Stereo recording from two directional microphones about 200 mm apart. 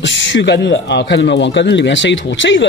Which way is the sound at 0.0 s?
65° left (ahead or behind).